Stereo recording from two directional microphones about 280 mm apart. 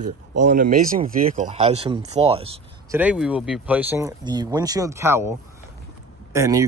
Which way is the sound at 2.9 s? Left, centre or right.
Centre.